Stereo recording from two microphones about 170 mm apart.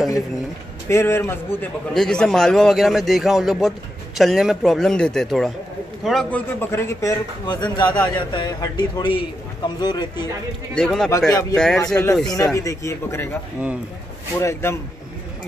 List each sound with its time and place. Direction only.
0.8 s a man's voice: 15° left (ahead or behind)
2.0 s a man's voice: 5° left (ahead or behind); by 10.3 s 25° left (ahead or behind)
10.7 s a man's voice: 5° left (ahead or behind)
11.1 s a man's voice: 20° left (ahead or behind)
11.5 s a man's voice: 5° left (ahead or behind)
14.4 s a man's voice: 15° left (ahead or behind)